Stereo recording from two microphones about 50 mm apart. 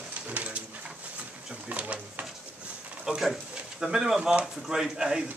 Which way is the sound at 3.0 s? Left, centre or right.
Centre.